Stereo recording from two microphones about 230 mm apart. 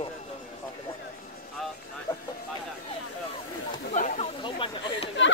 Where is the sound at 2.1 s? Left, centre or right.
Centre.